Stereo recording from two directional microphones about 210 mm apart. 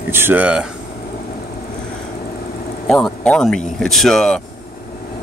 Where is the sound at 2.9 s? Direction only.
Centre (ahead or behind).